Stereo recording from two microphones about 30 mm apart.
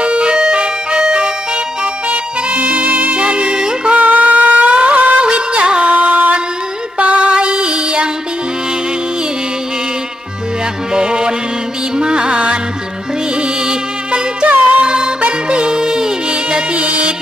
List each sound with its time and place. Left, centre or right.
0.0 s music: right
2.0 s music: right
3.2 s music: right
3.5 s music: right
3.9 s music: right
5.2 s music: right
5.9 s music: right
7.3 s music: right
10.9 s music: right
14.5 s music: right
14.9 s music: right